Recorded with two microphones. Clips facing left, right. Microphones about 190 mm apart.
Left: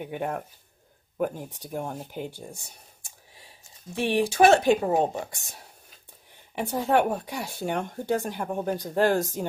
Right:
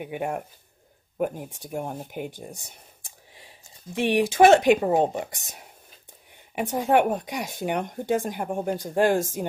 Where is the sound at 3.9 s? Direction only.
20° right (ahead or behind).